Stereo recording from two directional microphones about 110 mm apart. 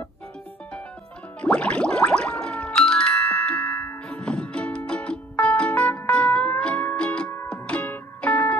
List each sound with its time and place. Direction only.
1.4 s music: 10° left (ahead or behind)